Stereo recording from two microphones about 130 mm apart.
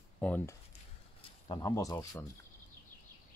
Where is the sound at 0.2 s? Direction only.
10° left (ahead or behind).